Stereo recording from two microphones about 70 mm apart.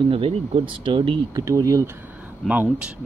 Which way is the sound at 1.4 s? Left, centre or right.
Right.